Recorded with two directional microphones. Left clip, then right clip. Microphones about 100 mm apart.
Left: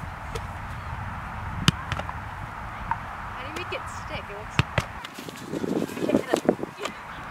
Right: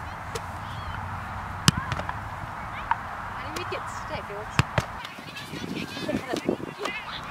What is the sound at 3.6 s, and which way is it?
Speech, 5° left (ahead or behind).